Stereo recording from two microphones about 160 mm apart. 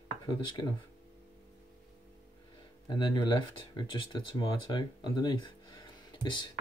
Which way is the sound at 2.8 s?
25° left (ahead or behind).